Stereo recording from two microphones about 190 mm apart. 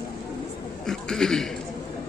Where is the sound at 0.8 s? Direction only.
Centre (ahead or behind).